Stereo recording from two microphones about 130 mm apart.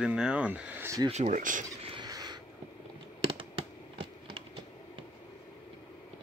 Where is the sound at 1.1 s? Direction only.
65° right (ahead or behind).